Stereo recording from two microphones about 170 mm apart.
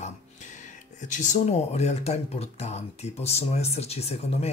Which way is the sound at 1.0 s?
45° left (ahead or behind).